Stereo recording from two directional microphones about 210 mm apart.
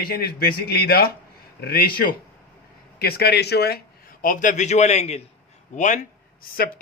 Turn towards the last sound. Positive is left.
turn(degrees=45)  # may be behind; listen again after turning